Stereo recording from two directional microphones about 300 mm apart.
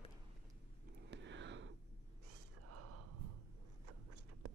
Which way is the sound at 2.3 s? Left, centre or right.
Right.